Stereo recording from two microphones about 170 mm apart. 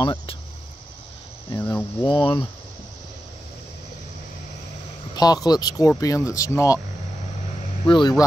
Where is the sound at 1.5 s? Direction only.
15° left (ahead or behind).